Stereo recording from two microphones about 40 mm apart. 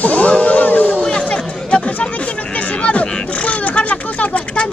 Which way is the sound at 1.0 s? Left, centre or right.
Left.